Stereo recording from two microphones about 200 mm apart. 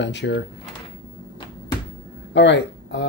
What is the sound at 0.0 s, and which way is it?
Speech, 60° left (ahead or behind).